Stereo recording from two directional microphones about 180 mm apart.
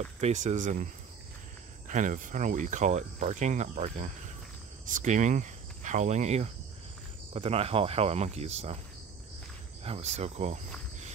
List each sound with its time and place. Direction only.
0.2 s speech: 40° right (ahead or behind)
1.9 s speech: 45° right (ahead or behind)
9.8 s speech: 35° right (ahead or behind)